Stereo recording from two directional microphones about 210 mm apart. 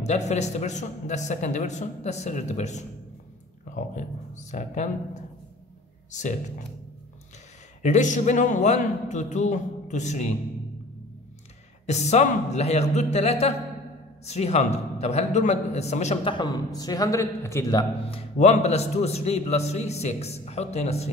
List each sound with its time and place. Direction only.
0.0 s a man's voice: 35° left (ahead or behind)
7.8 s a man's voice: 35° left (ahead or behind)
11.8 s a man's voice: 30° left (ahead or behind)
18.4 s a man's voice: 30° left (ahead or behind)